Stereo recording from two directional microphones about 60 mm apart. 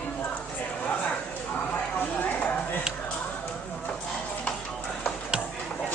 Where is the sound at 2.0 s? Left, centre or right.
Left.